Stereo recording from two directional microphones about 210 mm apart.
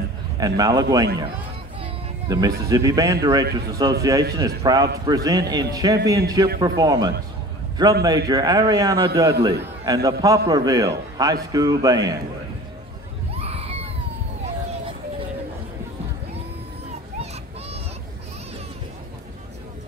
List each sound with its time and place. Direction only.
0.4 s a man's voice: 15° right (ahead or behind)
8.3 s a man's voice: 15° right (ahead or behind)
13.3 s a sound: 30° right (ahead or behind)